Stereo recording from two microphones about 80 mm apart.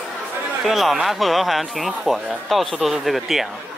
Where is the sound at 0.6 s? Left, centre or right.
Centre.